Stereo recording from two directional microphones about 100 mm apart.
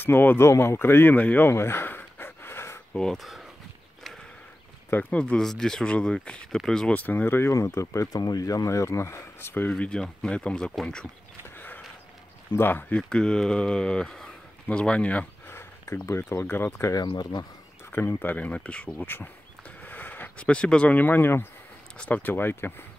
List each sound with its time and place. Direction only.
0.0 s speech: 20° left (ahead or behind)
2.9 s speech: 5° left (ahead or behind)
4.9 s speech: 10° left (ahead or behind)
7.0 s speech: 20° left (ahead or behind)
9.7 s speech: 10° left (ahead or behind)
11.5 s a sound: 20° left (ahead or behind)
12.5 s speech: 20° left (ahead or behind)
13.1 s speech: 10° left (ahead or behind)
16.9 s speech: 45° left (ahead or behind)
17.9 s speech: 20° left (ahead or behind)